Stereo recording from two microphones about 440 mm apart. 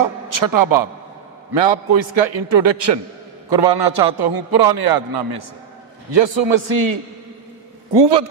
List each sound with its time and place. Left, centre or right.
0.0 s a man's voice: right
1.5 s a man's voice: right
3.4 s a man's voice: right
6.1 s a man's voice: right
8.0 s a man's voice: right